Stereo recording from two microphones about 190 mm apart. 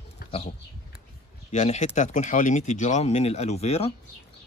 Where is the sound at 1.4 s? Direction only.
35° left (ahead or behind).